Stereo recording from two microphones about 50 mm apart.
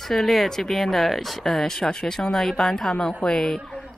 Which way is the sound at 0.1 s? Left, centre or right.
Centre.